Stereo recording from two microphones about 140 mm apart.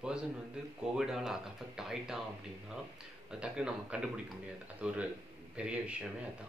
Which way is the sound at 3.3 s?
5° right (ahead or behind).